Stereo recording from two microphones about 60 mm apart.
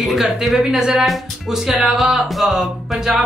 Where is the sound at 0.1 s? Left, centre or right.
Centre.